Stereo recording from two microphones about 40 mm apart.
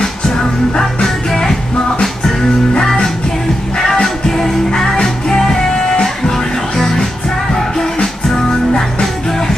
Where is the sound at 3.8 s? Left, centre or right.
Centre.